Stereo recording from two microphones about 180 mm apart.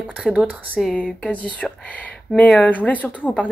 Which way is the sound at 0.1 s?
5° right (ahead or behind).